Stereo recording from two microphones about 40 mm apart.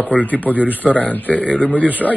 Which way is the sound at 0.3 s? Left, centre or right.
Left.